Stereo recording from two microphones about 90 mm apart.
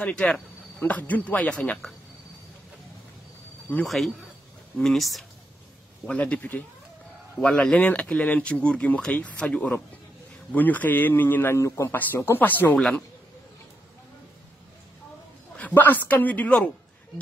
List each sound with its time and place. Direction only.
0.0 s speech: 10° left (ahead or behind)
3.8 s speech: centre (ahead or behind)
6.0 s a man's voice: 10° left (ahead or behind)
12.7 s speech: 5° left (ahead or behind)
15.5 s speech: 20° left (ahead or behind)